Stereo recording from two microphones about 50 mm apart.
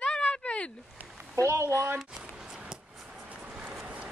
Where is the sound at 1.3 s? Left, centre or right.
Right.